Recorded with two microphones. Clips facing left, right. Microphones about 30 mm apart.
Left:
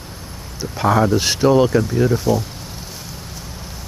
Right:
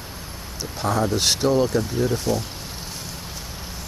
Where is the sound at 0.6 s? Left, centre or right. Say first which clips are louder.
Left 7 dB; centre.